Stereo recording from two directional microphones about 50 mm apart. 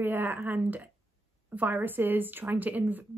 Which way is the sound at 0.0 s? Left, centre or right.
Right.